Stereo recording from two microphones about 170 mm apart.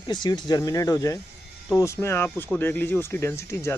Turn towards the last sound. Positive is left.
turn(degrees=15)  # may be behind; listen again after turning